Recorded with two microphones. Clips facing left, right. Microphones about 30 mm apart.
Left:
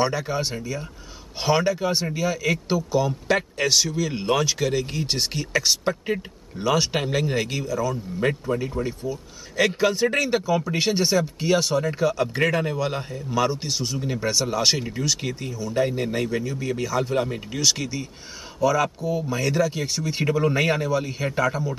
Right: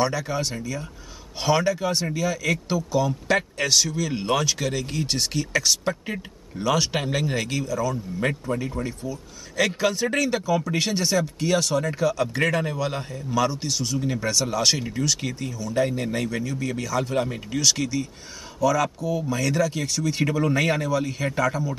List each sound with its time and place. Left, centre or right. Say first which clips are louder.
0.0 s speech: left 1 dB; centre